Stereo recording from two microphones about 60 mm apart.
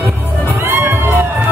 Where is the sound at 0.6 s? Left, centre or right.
Right.